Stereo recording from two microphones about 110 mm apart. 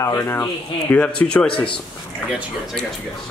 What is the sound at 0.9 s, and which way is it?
Speech, 10° left (ahead or behind).